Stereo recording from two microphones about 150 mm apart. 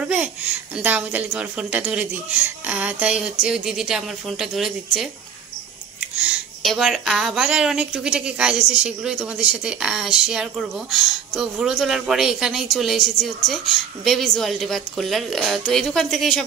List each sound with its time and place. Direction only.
0.0 s a woman's voice: 10° right (ahead or behind)
6.1 s speech: 5° right (ahead or behind)